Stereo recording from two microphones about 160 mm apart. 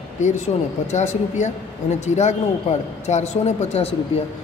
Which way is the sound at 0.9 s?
45° left (ahead or behind).